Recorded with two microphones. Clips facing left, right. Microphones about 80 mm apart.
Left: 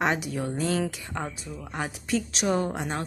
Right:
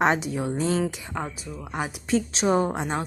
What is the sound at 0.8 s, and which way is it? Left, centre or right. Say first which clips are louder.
Speech: right 2 dB; centre.